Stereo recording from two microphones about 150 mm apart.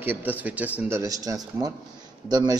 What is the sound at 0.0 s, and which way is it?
A man's voice, 10° right (ahead or behind).